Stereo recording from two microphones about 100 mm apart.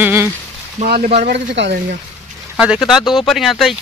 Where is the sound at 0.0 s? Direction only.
25° right (ahead or behind).